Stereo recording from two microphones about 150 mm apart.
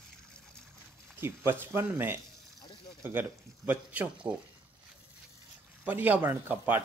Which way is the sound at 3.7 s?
10° right (ahead or behind).